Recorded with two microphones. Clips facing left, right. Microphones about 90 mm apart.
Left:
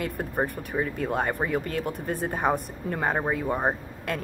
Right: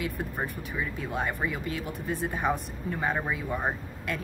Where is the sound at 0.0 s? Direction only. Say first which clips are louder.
Left 4 dB; 45° left (ahead or behind).